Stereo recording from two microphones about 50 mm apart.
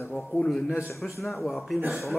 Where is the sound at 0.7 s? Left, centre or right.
Left.